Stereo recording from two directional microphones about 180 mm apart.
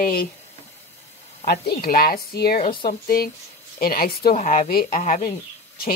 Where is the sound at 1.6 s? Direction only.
55° left (ahead or behind).